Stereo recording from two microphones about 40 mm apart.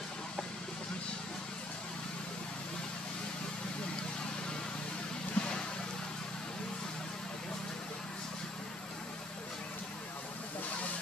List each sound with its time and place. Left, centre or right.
5.4 s vehicle: left